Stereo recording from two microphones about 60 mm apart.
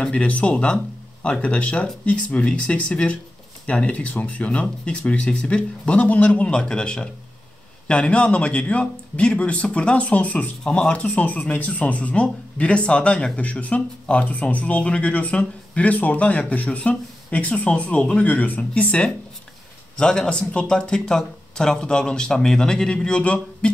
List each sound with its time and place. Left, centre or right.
0.0 s speech: left
10.6 s speech: centre
10.9 s speech: left